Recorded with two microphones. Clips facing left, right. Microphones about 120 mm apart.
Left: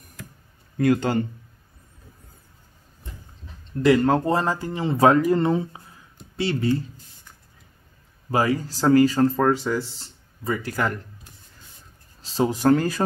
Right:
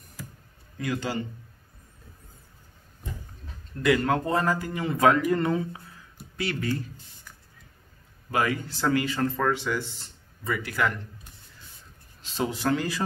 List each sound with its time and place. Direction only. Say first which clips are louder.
0.7 s speech: left 9 dB; 50° left (ahead or behind)
3.8 s speech: left 5 dB; 30° left (ahead or behind)
8.3 s speech: left 4 dB; 30° left (ahead or behind)
12.2 s speech: left 7 dB; 35° left (ahead or behind)